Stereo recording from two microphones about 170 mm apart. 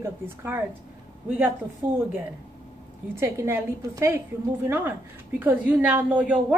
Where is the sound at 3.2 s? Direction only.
15° right (ahead or behind).